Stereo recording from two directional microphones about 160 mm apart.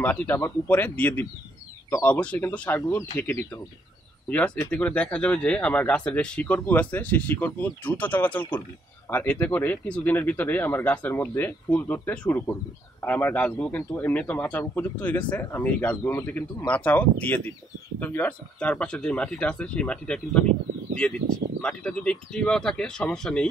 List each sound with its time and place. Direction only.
0.0 s a man's voice: 10° left (ahead or behind)
2.1 s a man's voice: 10° left (ahead or behind)
21.5 s speech: 5° left (ahead or behind)